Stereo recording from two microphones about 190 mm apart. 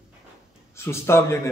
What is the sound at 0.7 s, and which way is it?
Speech, 15° left (ahead or behind).